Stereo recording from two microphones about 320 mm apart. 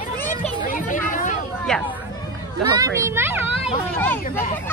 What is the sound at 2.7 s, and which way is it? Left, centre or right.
Speech, centre.